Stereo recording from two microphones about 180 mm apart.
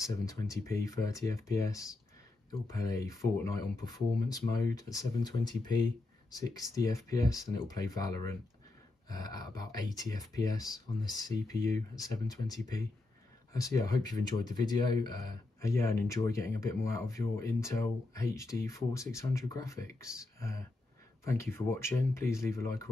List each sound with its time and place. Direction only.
0.0 s speech: 15° left (ahead or behind)